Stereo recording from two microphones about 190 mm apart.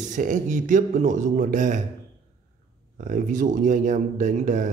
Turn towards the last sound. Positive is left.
turn(degrees=-40)  # may be behind; listen again after turning